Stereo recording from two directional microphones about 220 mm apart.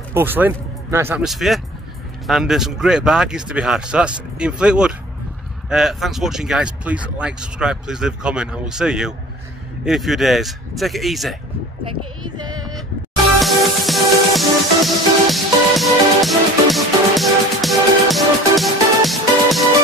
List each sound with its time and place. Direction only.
0.1 s speech: 10° right (ahead or behind)
11.8 s a sound: 20° right (ahead or behind)
13.4 s music: centre (ahead or behind)